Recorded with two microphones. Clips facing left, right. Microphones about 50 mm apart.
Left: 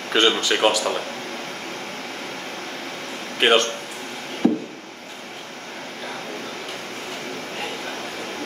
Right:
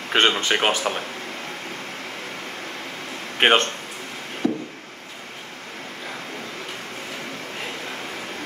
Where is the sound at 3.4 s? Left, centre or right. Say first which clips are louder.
Even; right.